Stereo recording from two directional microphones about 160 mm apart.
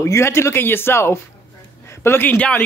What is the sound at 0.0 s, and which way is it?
A man's voice, 15° left (ahead or behind).